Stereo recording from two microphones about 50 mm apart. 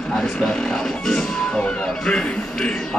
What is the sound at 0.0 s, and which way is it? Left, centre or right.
Vehicle, centre.